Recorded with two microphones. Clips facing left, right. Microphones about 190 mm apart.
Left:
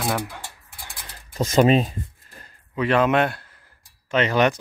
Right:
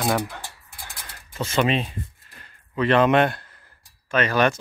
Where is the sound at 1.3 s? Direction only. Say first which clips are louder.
Left 5 dB; 40° left (ahead or behind).